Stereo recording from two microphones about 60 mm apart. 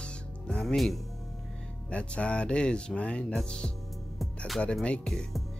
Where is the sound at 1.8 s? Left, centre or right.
Centre.